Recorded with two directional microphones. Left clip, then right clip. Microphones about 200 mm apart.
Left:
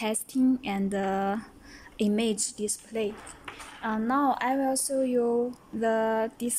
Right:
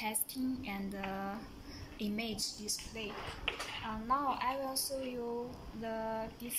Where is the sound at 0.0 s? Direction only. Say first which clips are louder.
Left 11 dB; 50° left (ahead or behind).